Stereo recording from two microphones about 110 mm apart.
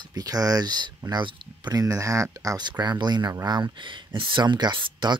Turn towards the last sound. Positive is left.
turn(degrees=-45)  # may be behind; listen again after turning